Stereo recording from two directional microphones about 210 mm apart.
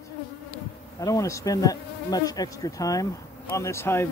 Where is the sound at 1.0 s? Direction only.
15° left (ahead or behind).